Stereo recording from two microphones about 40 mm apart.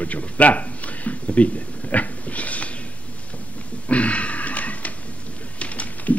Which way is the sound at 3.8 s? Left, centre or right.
Left.